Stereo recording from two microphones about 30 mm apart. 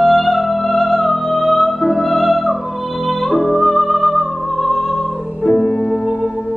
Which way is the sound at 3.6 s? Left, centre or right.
Centre.